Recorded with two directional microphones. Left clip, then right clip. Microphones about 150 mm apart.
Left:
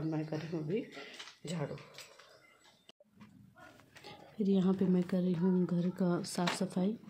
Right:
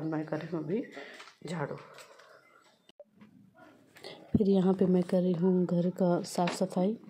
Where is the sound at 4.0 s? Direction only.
40° right (ahead or behind).